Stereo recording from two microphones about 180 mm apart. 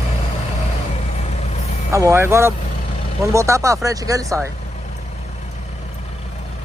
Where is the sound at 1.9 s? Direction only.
15° right (ahead or behind).